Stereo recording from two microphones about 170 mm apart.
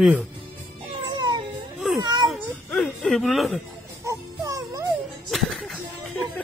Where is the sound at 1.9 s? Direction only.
25° right (ahead or behind).